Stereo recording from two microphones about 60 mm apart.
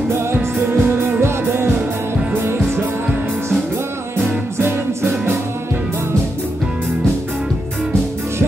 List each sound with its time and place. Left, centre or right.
0.1 s music: right
0.8 s music: right
1.2 s music: right
4.6 s music: right